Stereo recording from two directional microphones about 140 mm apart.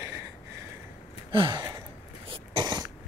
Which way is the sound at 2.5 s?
30° right (ahead or behind).